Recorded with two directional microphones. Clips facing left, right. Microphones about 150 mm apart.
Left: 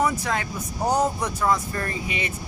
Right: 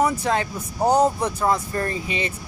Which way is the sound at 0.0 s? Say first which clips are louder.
Right 3 dB; 30° right (ahead or behind).